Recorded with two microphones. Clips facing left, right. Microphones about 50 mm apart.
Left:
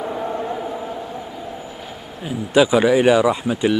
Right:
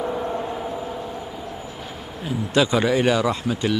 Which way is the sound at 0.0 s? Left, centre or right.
Centre.